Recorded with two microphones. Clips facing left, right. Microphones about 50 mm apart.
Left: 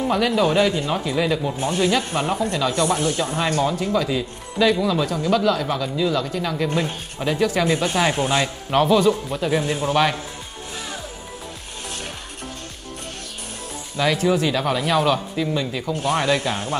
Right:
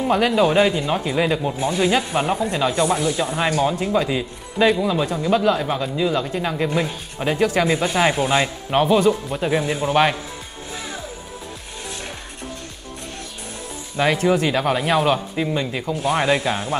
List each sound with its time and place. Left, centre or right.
0.3 s speech: right
3.7 s speech: right
7.2 s speech: right
7.6 s speech: right
13.9 s speech: right
16.0 s speech: centre